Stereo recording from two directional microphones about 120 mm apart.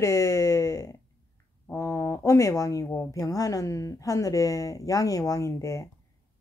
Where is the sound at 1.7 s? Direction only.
20° left (ahead or behind).